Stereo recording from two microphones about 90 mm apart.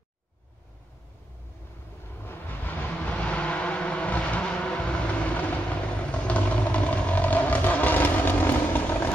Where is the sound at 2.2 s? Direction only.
20° left (ahead or behind).